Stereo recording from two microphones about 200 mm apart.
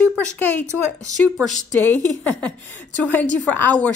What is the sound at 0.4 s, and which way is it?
A woman's voice, 10° left (ahead or behind).